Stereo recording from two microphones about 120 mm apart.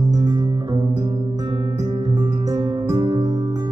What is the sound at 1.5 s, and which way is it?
Music, 35° right (ahead or behind).